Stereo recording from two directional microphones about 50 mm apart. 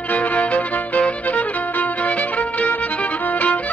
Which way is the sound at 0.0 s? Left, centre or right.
Left.